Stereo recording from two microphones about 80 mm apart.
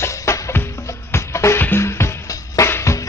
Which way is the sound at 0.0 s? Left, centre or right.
Left.